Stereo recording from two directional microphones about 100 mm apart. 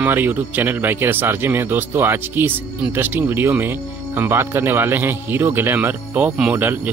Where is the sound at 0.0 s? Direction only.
20° right (ahead or behind).